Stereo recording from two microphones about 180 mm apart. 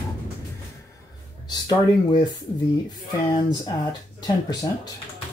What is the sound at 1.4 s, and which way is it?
Speech, 25° left (ahead or behind).